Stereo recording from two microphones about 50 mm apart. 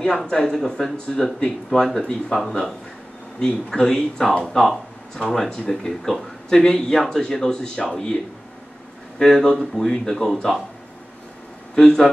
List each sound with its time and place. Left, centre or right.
0.3 s speech: centre
3.3 s speech: centre
9.2 s speech: centre
11.7 s speech: centre